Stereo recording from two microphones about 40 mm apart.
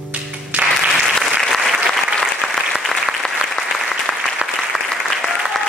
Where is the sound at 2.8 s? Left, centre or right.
Centre.